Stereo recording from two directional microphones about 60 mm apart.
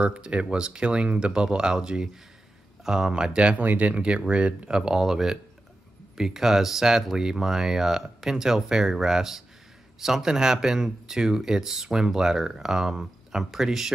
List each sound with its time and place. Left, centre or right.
0.0 s speech: centre